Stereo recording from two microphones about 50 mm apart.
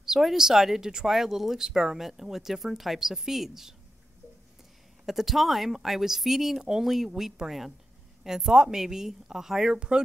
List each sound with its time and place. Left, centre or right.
0.0 s speech: centre
5.0 s speech: centre